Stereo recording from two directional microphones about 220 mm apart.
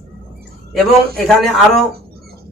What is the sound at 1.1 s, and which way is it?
Speech, centre (ahead or behind).